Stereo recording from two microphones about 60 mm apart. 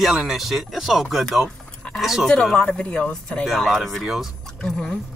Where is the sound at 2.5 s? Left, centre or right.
Centre.